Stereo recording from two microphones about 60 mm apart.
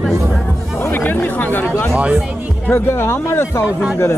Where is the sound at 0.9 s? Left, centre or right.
Left.